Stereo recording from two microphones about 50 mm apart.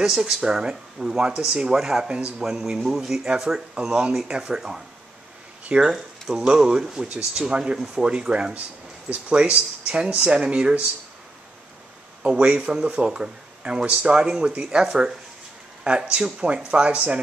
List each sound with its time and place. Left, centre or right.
0.0 s speech: centre
5.9 s speech: centre
12.2 s speech: right